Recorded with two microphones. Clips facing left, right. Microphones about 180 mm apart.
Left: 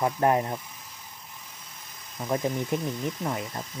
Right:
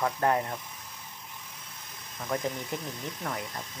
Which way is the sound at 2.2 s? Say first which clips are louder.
Left 4 dB; 25° left (ahead or behind).